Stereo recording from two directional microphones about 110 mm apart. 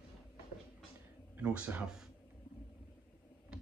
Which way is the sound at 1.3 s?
15° right (ahead or behind).